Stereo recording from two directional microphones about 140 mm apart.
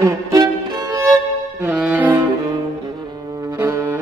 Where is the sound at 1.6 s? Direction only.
10° right (ahead or behind).